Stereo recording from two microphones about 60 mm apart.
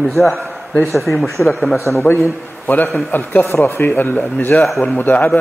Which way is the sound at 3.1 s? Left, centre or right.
Left.